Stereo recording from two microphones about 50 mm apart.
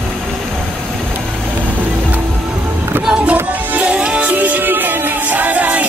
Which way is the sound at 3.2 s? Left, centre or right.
Right.